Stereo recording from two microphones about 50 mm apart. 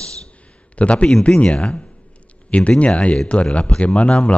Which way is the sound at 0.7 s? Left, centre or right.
Left.